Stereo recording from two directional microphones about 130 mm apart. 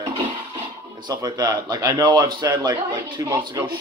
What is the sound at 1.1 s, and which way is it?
A man's voice, 30° right (ahead or behind).